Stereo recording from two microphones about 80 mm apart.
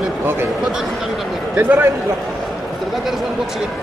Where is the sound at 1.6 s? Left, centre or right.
Right.